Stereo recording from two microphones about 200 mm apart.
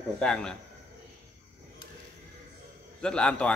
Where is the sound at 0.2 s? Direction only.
5° left (ahead or behind).